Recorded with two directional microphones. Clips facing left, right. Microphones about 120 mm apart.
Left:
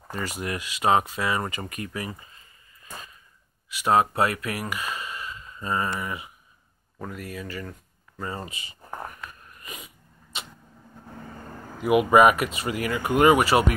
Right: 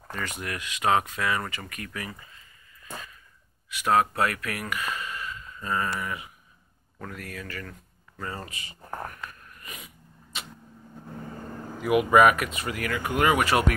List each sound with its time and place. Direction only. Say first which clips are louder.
0.4 s speech: left 4 dB; 25° left (ahead or behind)
8.8 s a sound: right 1 dB; 15° left (ahead or behind)
11.9 s speech: left 2 dB; 15° left (ahead or behind)